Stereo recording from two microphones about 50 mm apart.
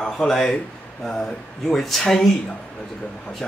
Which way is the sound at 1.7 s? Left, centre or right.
Centre.